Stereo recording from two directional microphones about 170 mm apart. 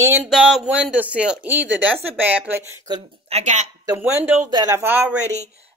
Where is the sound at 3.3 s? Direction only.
45° right (ahead or behind).